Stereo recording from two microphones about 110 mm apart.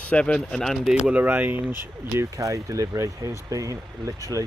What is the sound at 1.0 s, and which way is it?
Speech, 15° right (ahead or behind).